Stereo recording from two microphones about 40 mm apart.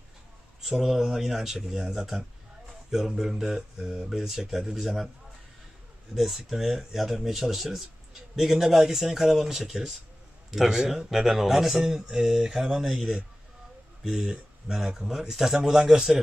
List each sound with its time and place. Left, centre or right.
0.7 s speech: centre
6.1 s speech: centre; by 14.4 s right
14.7 s speech: centre